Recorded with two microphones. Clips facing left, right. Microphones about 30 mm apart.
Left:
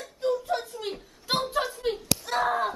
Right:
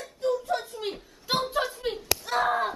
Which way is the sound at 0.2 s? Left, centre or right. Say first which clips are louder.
Even; centre.